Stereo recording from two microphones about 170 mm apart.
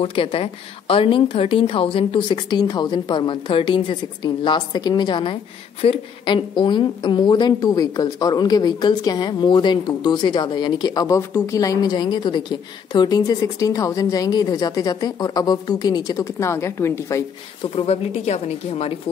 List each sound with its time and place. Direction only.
0.0 s a woman's voice: 30° left (ahead or behind); by 17.2 s 15° left (ahead or behind)
17.7 s a woman's voice: 35° left (ahead or behind)